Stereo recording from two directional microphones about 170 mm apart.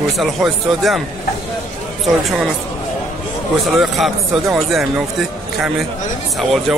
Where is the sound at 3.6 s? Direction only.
Centre (ahead or behind).